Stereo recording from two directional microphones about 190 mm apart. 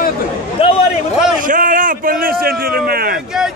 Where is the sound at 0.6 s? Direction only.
30° left (ahead or behind).